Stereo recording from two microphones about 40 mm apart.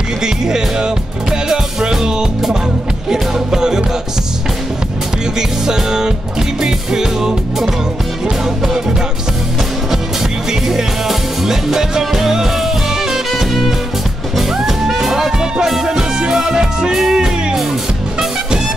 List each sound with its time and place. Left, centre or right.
0.2 s music: centre
5.7 s music: centre
10.7 s music: centre